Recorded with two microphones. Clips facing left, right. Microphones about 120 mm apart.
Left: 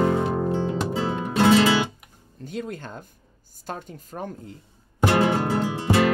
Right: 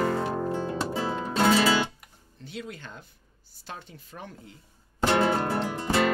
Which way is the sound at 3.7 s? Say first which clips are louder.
Left 7 dB; 45° left (ahead or behind).